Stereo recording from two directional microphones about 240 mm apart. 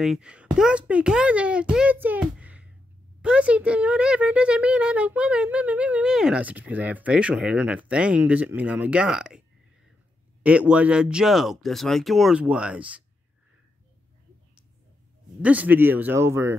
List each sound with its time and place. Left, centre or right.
0.0 s a child's voice: centre
10.4 s a child's voice: centre
15.4 s a man's voice: centre